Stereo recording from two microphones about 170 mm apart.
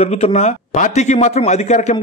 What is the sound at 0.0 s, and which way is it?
A man's voice, 40° left (ahead or behind).